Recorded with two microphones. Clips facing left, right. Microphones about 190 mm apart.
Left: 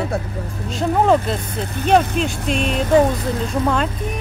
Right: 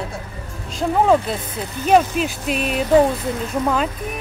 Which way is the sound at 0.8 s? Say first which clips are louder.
Even; centre (ahead or behind).